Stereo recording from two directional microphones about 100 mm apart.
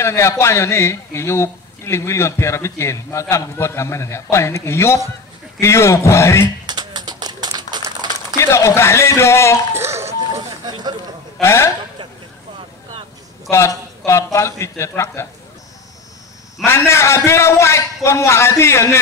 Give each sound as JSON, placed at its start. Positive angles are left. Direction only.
{"t": 0.0, "sound": "a man's voice", "side_deg": 30}
{"t": 6.6, "sound": "typing", "side_deg": -45}
{"t": 8.0, "sound": "a sound", "side_deg": -45}
{"t": 8.4, "sound": "a man's voice", "side_deg": 30}
{"t": 9.8, "sound": "a sound", "side_deg": -25}
{"t": 10.7, "sound": "a sound", "side_deg": -45}
{"t": 11.4, "sound": "a man's voice", "side_deg": 25}
{"t": 13.5, "sound": "a man's voice", "side_deg": 30}
{"t": 16.6, "sound": "a man's voice", "side_deg": 25}